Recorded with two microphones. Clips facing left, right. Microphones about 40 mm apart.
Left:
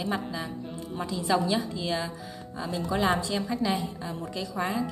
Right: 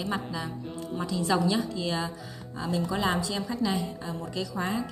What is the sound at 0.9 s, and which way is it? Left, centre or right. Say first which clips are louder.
Speech: even; centre.